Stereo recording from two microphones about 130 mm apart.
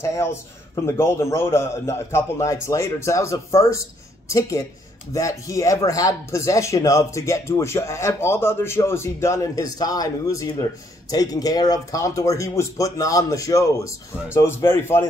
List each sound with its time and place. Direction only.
0.0 s speech: 20° left (ahead or behind)